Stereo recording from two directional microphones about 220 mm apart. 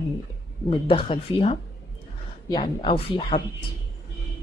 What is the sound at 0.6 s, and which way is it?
A woman's voice, 25° left (ahead or behind).